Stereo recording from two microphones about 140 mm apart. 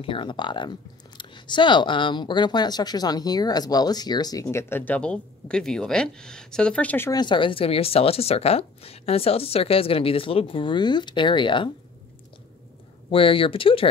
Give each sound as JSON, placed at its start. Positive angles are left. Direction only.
{"t": 0.0, "sound": "speech", "side_deg": 35}
{"t": 7.1, "sound": "speech", "side_deg": 30}
{"t": 13.1, "sound": "speech", "side_deg": 40}